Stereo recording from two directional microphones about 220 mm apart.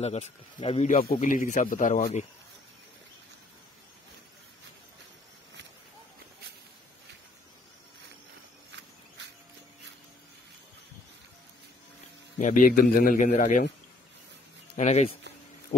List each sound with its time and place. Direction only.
0.0 s speech: 30° left (ahead or behind)
12.4 s speech: 35° left (ahead or behind)
14.8 s speech: 30° left (ahead or behind)